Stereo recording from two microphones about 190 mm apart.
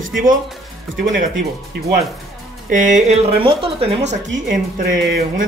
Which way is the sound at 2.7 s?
40° right (ahead or behind).